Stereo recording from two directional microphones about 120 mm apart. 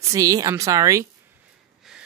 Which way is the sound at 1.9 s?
5° right (ahead or behind).